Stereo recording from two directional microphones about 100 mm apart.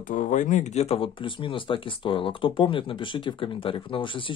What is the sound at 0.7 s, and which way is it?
Speech, 80° left.